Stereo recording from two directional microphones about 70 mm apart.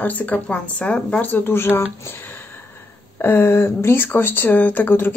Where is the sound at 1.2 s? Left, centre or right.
Left.